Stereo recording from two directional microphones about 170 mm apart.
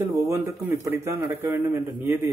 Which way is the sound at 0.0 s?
15° right (ahead or behind).